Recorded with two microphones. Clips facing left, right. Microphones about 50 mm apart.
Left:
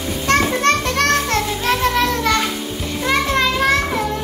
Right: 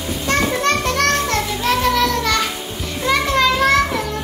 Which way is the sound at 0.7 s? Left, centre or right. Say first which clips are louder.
Left 3 dB; left.